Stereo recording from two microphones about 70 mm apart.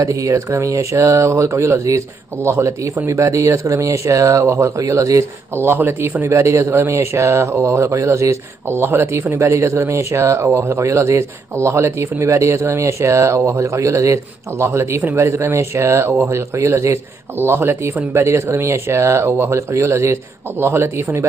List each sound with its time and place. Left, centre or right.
0.0 s speech: right
5.5 s a man's voice: right